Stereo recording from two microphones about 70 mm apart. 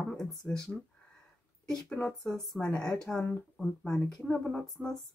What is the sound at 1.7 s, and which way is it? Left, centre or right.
Speech, centre.